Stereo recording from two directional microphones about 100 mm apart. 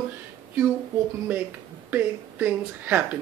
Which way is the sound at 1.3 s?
20° right (ahead or behind).